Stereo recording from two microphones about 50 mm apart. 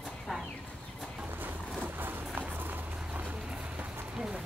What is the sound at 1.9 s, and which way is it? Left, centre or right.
Music, right.